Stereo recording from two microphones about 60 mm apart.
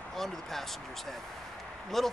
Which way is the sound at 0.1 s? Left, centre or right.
Centre.